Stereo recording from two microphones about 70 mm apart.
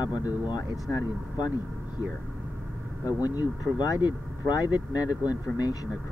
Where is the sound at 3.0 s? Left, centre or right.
Left.